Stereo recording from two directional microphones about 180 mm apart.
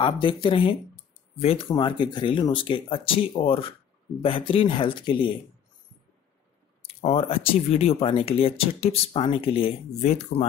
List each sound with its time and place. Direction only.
0.0 s speech: 25° left (ahead or behind)
7.0 s speech: 30° left (ahead or behind)